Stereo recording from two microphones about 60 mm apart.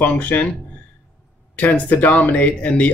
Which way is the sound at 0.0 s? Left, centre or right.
Left.